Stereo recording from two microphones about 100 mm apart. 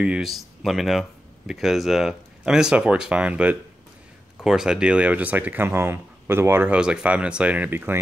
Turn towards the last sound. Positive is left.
turn(degrees=-20)  # may be behind; listen again after turning